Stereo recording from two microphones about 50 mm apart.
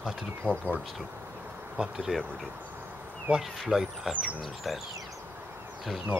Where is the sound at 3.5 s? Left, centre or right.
Centre.